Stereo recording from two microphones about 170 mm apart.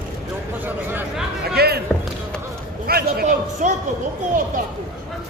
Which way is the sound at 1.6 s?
65° right (ahead or behind).